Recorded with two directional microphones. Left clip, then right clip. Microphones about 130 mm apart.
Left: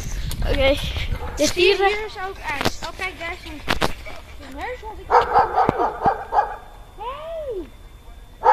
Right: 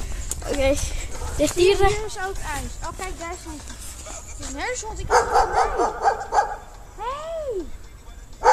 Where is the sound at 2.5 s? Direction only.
65° right (ahead or behind).